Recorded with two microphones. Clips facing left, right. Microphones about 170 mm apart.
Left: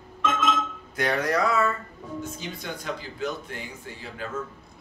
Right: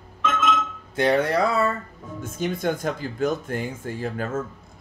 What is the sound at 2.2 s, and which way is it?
Speech, 50° right (ahead or behind).